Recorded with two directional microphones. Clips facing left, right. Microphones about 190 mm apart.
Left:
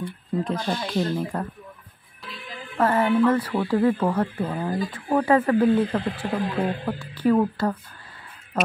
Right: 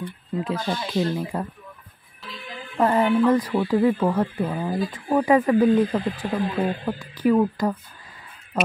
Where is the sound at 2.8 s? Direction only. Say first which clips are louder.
Right 1 dB; 20° right (ahead or behind).